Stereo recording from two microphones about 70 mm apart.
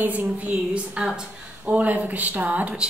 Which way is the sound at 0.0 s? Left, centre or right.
Right.